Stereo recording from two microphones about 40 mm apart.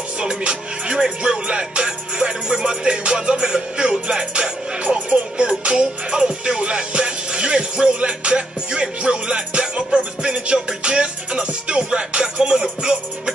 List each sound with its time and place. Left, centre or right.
0.2 s music: right
0.9 s music: centre